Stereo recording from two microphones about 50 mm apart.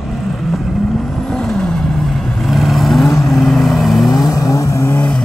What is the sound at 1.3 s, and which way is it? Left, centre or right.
Vehicle, centre.